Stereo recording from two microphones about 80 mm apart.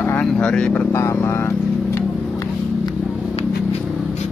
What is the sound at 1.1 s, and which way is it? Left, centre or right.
Vehicle, left.